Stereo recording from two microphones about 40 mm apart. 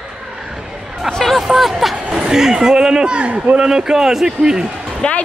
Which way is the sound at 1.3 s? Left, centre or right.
Centre.